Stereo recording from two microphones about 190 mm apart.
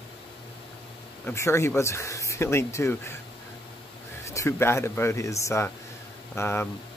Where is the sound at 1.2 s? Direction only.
15° left (ahead or behind).